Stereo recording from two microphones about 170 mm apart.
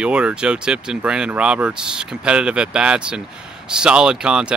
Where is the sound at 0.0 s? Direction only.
5° right (ahead or behind).